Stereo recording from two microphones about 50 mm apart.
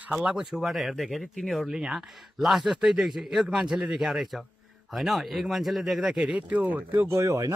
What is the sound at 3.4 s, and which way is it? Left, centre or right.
Speech, right.